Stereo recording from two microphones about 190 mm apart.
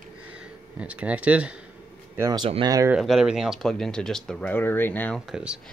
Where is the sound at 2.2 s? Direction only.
20° right (ahead or behind).